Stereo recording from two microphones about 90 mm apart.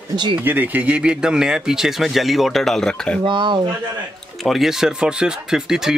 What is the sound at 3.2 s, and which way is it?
Speech, 60° right (ahead or behind).